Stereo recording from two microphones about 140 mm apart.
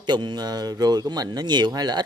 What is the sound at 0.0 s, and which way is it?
Speech, 30° right (ahead or behind).